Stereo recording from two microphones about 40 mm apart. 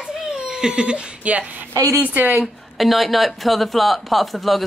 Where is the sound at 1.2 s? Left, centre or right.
Right.